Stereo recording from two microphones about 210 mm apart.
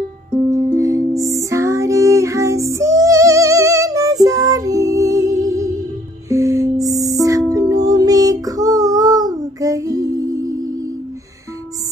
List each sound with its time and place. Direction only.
0.5 s music: 15° right (ahead or behind)